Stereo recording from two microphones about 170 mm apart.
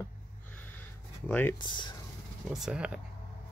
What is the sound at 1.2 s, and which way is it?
Speech, 10° left (ahead or behind).